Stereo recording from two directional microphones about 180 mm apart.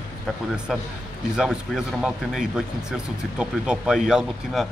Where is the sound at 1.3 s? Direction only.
Centre (ahead or behind).